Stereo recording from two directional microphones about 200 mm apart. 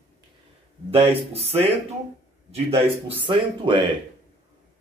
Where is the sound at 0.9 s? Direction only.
30° right (ahead or behind).